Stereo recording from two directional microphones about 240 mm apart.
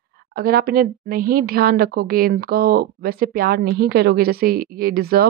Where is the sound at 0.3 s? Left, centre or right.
Right.